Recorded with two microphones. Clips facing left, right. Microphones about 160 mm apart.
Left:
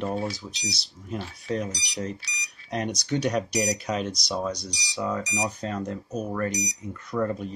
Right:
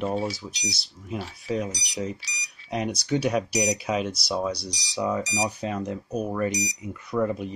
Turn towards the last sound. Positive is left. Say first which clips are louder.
# right 2 dB
turn(degrees=-10)  # may be behind; listen again after turning